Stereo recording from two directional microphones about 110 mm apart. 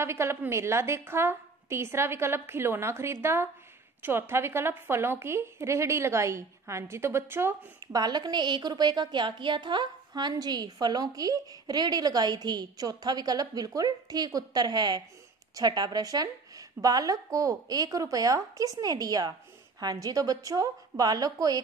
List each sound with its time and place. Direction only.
0.0 s a woman's voice: 25° right (ahead or behind)
7.9 s a woman's voice: 40° right (ahead or behind)